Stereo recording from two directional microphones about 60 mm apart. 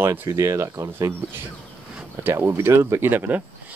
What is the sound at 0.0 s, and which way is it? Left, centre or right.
Speech, right.